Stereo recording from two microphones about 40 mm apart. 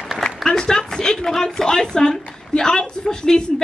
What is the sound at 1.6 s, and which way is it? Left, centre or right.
A woman's voice, centre.